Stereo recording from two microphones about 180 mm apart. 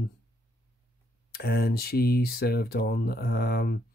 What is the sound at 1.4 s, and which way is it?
Speech, 60° left (ahead or behind).